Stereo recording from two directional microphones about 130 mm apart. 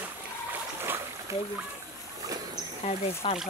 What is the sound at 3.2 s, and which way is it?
Speech, 40° left (ahead or behind).